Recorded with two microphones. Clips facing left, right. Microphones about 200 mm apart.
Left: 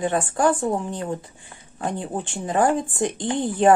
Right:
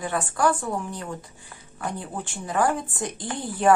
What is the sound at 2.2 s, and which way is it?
Speech, 20° left (ahead or behind).